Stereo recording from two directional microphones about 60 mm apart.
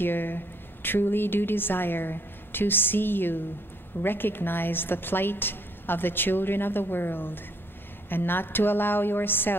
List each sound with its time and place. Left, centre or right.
0.0 s a woman's voice: left